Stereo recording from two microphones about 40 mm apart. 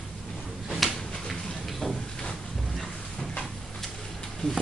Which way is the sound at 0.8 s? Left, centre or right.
Centre.